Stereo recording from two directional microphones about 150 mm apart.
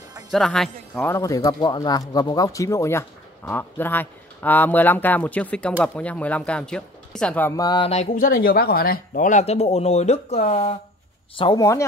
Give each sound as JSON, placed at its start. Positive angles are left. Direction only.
{"t": 0.3, "sound": "speech", "side_deg": 0}
{"t": 1.0, "sound": "speech", "side_deg": 20}
{"t": 7.5, "sound": "a sound", "side_deg": 30}
{"t": 8.1, "sound": "speech", "side_deg": 75}
{"t": 11.3, "sound": "speech", "side_deg": 35}